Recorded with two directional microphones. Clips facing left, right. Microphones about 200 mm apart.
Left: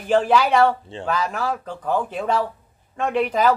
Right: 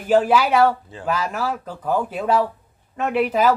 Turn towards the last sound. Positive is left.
turn(degrees=-5)  # may be behind; listen again after turning